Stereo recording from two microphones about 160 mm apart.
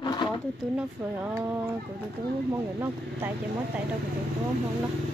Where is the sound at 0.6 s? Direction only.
10° right (ahead or behind).